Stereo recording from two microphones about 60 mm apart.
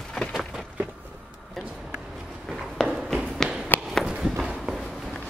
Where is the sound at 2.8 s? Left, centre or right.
Centre.